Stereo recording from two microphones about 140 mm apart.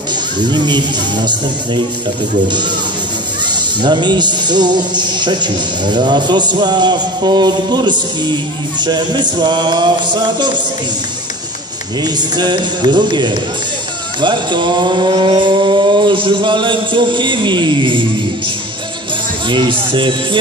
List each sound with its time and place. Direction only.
0.4 s music: 30° right (ahead or behind)
3.4 s music: 30° right (ahead or behind)
12.0 s music: 30° right (ahead or behind)
19.5 s music: 35° right (ahead or behind)